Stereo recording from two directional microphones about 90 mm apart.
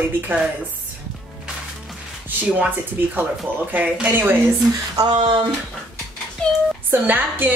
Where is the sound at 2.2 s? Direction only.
20° right (ahead or behind).